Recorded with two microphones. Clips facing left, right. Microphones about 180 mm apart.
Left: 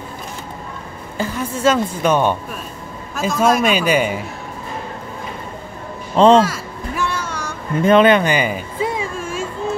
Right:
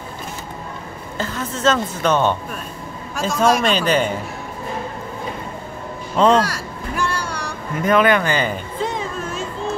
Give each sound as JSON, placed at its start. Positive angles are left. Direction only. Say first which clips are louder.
{"t": 1.1, "sound": "a woman's voice", "louder": "left 3 dB", "side_deg": 10}
{"t": 6.1, "sound": "speech", "louder": "left 4 dB", "side_deg": 30}
{"t": 6.4, "sound": "a sound", "louder": "left 3 dB", "side_deg": 0}
{"t": 7.8, "sound": "music", "louder": "left 4 dB", "side_deg": 25}